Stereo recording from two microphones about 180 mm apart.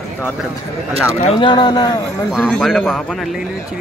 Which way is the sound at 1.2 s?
30° left (ahead or behind).